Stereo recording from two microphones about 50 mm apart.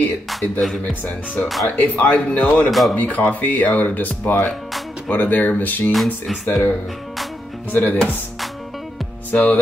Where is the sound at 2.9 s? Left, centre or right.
Left.